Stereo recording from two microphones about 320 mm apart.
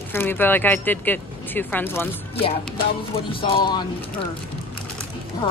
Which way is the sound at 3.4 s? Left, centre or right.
Centre.